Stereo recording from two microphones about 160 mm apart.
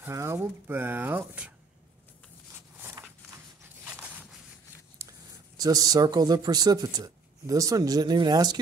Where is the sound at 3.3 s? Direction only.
10° right (ahead or behind).